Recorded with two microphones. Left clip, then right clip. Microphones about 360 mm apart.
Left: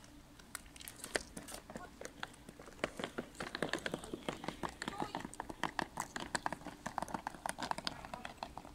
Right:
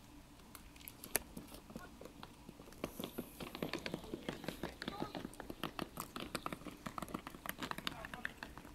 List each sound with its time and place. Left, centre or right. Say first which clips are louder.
2.8 s typing: left 5 dB; left